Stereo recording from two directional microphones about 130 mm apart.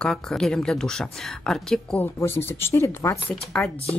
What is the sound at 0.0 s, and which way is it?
Speech, 5° left (ahead or behind).